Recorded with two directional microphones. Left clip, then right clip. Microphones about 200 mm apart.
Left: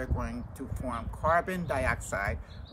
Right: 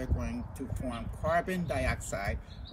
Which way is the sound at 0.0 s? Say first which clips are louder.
Left 2 dB; 15° left (ahead or behind).